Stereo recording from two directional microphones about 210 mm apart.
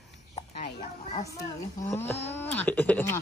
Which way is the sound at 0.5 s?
30° left (ahead or behind).